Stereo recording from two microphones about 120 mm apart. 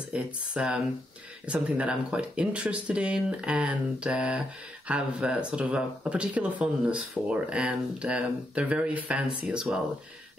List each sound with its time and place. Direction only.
0.1 s speech: 10° right (ahead or behind)